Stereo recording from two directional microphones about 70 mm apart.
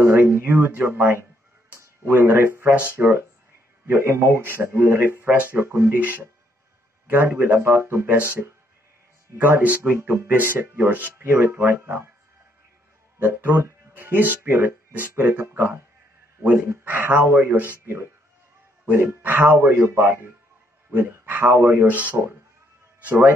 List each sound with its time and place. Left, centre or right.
0.0 s a man's voice: right
5.9 s a man's voice: right
13.2 s a man's voice: right